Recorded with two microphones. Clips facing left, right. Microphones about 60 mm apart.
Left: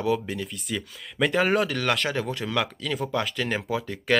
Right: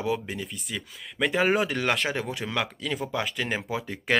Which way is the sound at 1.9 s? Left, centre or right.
Centre.